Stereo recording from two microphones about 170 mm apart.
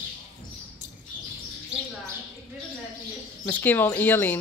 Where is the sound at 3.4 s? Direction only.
10° left (ahead or behind).